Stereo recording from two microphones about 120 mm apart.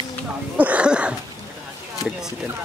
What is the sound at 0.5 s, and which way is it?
Speech, 10° right (ahead or behind).